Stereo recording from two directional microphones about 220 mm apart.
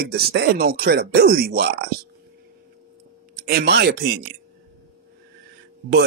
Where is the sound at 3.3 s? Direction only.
45° right (ahead or behind).